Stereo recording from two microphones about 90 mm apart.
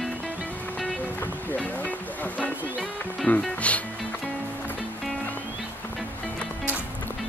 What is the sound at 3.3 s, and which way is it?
Speech, 15° left (ahead or behind).